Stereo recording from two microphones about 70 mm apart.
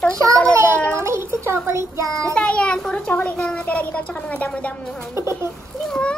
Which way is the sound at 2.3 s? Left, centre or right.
Centre.